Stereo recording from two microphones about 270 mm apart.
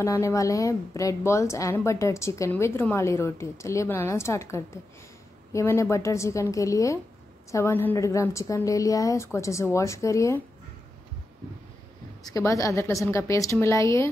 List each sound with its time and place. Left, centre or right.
0.0 s a woman's voice: centre
12.2 s a woman's voice: centre